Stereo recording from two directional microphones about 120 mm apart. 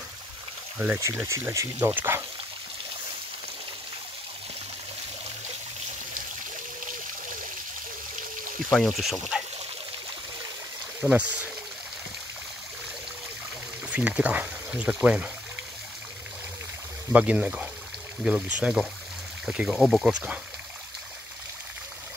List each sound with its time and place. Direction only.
0.7 s speech: 15° right (ahead or behind)
8.8 s speech: centre (ahead or behind)
11.0 s speech: 10° right (ahead or behind)
13.8 s speech: 10° right (ahead or behind)
17.1 s speech: 10° right (ahead or behind)